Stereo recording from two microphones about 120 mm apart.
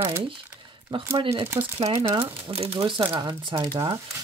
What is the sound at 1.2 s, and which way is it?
Speech, 45° right (ahead or behind).